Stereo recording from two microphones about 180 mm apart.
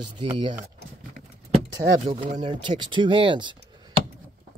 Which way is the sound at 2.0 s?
30° right (ahead or behind).